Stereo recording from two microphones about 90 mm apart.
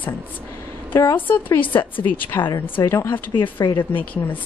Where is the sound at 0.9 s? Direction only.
25° left (ahead or behind).